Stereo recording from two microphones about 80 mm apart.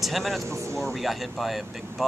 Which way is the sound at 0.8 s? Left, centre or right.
Centre.